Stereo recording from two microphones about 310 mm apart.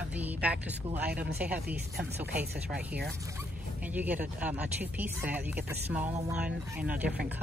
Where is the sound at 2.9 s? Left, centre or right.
Right.